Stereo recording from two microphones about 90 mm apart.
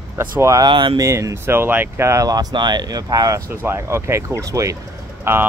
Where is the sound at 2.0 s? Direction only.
40° right (ahead or behind).